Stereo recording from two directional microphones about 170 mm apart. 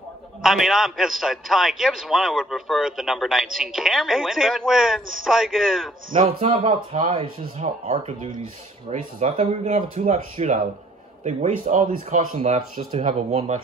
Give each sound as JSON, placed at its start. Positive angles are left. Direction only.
{"t": 0.4, "sound": "a man's voice", "side_deg": 0}
{"t": 6.1, "sound": "speech", "side_deg": -45}
{"t": 12.4, "sound": "speech", "side_deg": -35}